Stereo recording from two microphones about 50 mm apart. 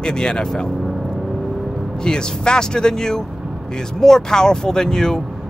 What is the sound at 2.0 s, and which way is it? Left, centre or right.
Speech, centre.